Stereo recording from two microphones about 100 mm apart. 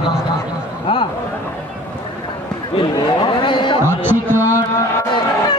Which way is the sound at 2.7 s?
55° left (ahead or behind).